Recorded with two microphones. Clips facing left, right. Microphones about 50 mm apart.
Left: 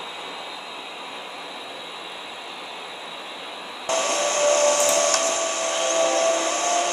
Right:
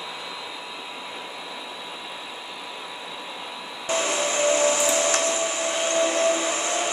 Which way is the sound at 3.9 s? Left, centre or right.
Centre.